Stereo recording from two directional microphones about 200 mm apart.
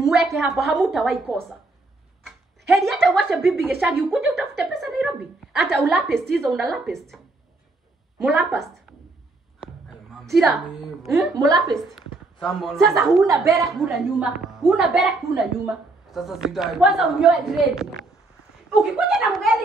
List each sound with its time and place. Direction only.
0.0 s a woman's voice: centre (ahead or behind)
2.2 s a sound: centre (ahead or behind)
3.8 s a woman's voice: centre (ahead or behind)
8.2 s a woman's voice: centre (ahead or behind)
10.3 s a woman's voice: centre (ahead or behind)
11.3 s a woman's voice: 20° right (ahead or behind)
11.7 s a woman's voice: centre (ahead or behind)
13.3 s speech: 15° right (ahead or behind)
13.7 s a woman's voice: centre (ahead or behind)